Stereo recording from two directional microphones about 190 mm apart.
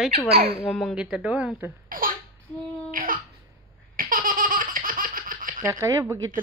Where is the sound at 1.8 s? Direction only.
50° right (ahead or behind).